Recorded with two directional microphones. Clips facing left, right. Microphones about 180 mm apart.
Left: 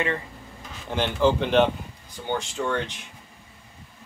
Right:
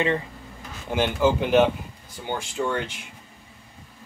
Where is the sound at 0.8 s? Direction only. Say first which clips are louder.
Even; 10° right (ahead or behind).